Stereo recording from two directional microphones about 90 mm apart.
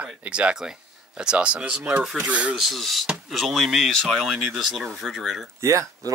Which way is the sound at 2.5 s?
Centre (ahead or behind).